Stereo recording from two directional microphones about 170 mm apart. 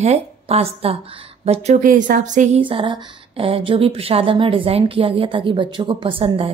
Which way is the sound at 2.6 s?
30° right (ahead or behind).